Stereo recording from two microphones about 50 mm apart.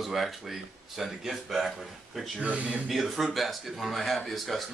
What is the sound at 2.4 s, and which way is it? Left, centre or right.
Speech, right.